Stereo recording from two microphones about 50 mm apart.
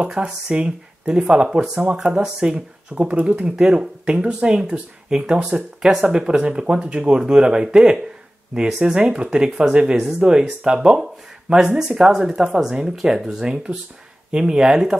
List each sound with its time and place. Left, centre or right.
0.1 s speech: centre